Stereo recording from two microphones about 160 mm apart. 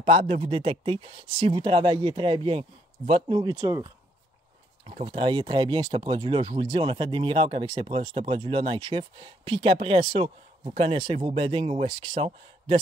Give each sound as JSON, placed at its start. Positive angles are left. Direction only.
{"t": 0.0, "sound": "speech", "side_deg": -35}
{"t": 4.8, "sound": "speech", "side_deg": -35}